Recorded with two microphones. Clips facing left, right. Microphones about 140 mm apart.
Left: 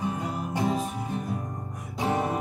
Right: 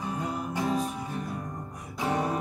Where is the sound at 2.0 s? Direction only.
25° left (ahead or behind).